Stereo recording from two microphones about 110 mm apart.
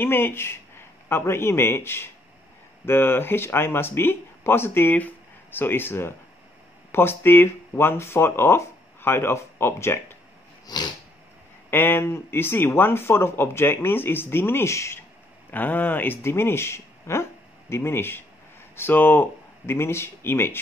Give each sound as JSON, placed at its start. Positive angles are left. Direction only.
{"t": 0.0, "sound": "a man's voice", "side_deg": 20}
{"t": 10.7, "sound": "a sound", "side_deg": 40}
{"t": 11.7, "sound": "speech", "side_deg": 20}